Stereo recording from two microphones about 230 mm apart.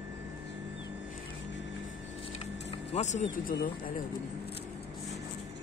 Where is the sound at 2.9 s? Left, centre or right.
Left.